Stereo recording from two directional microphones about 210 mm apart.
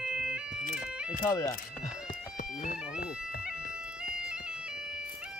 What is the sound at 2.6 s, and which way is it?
Bagpipes, 50° left (ahead or behind).